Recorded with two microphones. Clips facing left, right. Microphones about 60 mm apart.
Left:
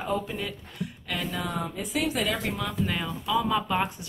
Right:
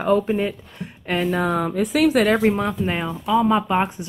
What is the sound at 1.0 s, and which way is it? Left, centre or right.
Speech, right.